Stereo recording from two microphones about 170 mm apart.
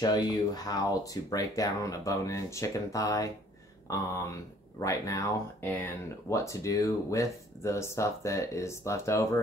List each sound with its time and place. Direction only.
0.0 s speech: 25° left (ahead or behind)